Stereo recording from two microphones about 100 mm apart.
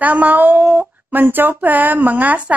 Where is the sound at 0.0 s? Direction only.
15° right (ahead or behind).